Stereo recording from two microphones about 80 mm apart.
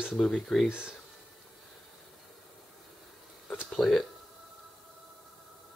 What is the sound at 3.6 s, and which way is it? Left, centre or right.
Speech, centre.